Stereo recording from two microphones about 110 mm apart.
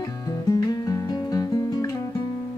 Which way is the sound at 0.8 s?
35° left (ahead or behind).